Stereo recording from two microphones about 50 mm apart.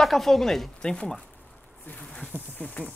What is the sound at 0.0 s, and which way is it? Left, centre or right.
Speech, centre.